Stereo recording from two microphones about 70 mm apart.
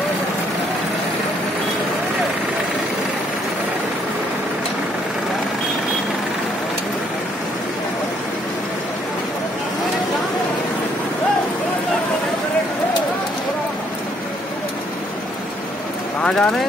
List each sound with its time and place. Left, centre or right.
16.2 s clip-clop: centre